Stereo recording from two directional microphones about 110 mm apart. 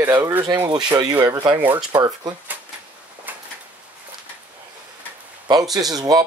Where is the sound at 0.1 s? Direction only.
20° right (ahead or behind).